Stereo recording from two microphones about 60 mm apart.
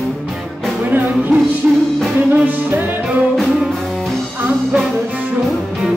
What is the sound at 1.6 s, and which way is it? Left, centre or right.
Music, centre.